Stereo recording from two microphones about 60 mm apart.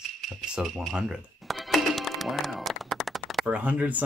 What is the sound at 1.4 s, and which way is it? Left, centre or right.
Music, centre.